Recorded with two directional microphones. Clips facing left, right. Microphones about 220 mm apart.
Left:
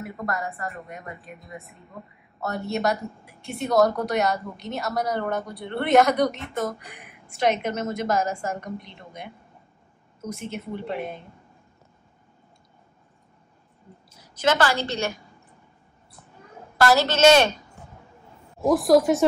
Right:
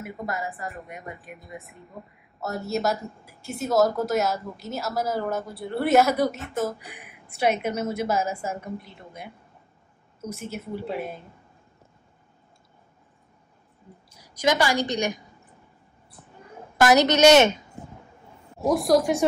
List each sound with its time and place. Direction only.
0.0 s speech: centre (ahead or behind)
10.3 s speech: 5° right (ahead or behind)
14.1 s a woman's voice: 10° right (ahead or behind)
16.8 s a woman's voice: 15° right (ahead or behind)
18.7 s speech: centre (ahead or behind)